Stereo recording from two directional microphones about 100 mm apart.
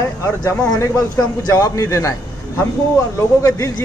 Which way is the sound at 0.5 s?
30° left (ahead or behind).